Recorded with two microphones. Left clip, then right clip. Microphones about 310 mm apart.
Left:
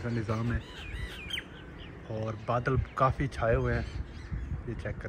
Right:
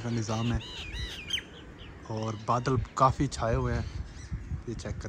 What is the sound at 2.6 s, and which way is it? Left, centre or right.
Speech, centre.